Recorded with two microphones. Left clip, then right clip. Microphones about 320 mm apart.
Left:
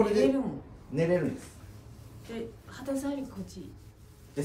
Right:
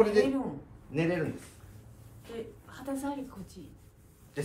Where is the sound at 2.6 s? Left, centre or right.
Centre.